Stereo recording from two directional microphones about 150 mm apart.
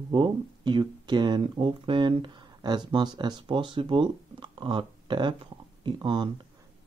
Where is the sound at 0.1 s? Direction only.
30° right (ahead or behind).